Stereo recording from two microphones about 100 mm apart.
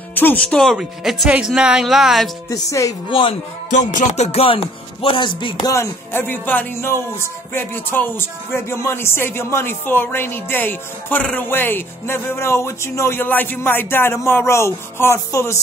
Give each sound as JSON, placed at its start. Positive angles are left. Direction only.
{"t": 0.1, "sound": "speech", "side_deg": 20}
{"t": 0.7, "sound": "speech", "side_deg": -5}
{"t": 2.5, "sound": "music", "side_deg": 30}
{"t": 3.1, "sound": "speech", "side_deg": 60}
{"t": 4.1, "sound": "speech", "side_deg": 90}
{"t": 5.7, "sound": "speech", "side_deg": 25}